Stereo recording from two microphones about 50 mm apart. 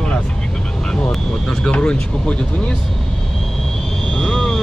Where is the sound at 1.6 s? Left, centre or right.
Left.